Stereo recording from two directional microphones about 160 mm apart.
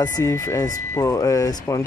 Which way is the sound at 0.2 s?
20° left (ahead or behind).